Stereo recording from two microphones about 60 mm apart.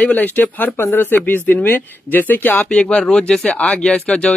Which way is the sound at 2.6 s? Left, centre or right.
Centre.